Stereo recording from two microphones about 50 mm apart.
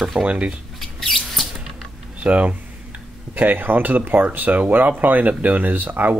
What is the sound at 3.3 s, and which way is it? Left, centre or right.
Speech, right.